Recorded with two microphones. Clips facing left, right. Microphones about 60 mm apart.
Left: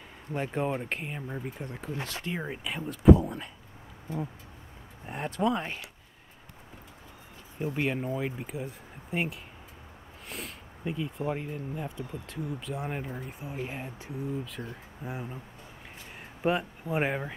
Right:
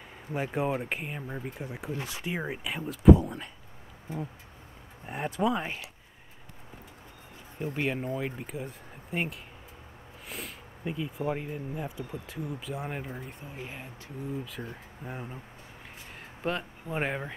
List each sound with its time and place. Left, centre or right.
0.3 s speech: centre
5.0 s speech: centre
7.5 s speech: centre
13.5 s speech: centre
14.2 s speech: centre
16.2 s speech: centre